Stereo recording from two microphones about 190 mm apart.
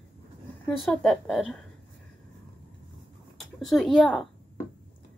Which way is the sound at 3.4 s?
Centre (ahead or behind).